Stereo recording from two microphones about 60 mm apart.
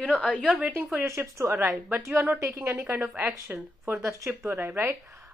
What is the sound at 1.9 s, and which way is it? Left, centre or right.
Speech, right.